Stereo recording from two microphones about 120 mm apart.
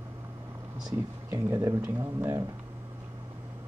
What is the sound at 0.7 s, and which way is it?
Speech, 30° right (ahead or behind).